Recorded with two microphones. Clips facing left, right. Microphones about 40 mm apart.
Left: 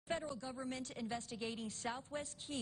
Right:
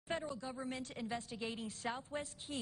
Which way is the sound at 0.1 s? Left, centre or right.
Centre.